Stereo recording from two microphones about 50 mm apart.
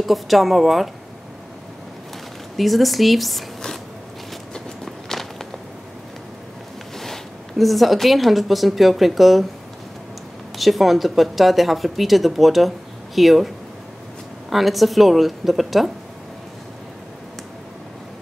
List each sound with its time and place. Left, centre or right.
0.0 s speech: centre
2.5 s speech: centre
4.8 s walk: centre
7.0 s speech: centre
10.6 s speech: centre
14.5 s speech: centre